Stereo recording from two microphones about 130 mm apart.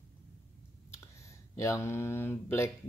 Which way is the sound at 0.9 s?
20° left (ahead or behind).